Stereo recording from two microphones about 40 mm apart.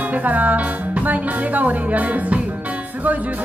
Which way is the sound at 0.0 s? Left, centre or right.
Right.